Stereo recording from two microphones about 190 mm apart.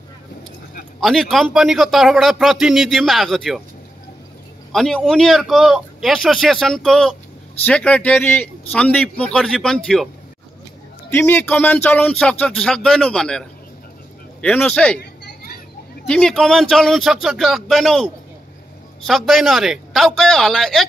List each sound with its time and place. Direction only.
1.0 s a man's voice: centre (ahead or behind)
4.7 s a man's voice: centre (ahead or behind)
11.1 s a man's voice: 10° left (ahead or behind)
15.0 s a sound: 55° left (ahead or behind)
16.1 s a man's voice: 5° left (ahead or behind)